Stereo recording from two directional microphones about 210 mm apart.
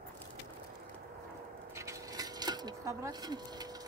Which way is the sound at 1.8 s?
15° right (ahead or behind).